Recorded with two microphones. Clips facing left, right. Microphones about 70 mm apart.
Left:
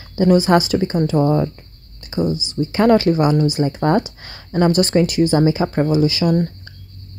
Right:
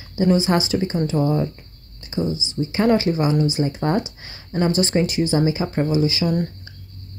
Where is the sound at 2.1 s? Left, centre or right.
Left.